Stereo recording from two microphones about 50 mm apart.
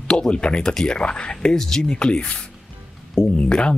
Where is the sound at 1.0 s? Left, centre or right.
Left.